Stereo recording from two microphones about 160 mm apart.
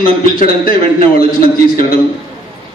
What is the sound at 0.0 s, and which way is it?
A man's voice, 65° left (ahead or behind).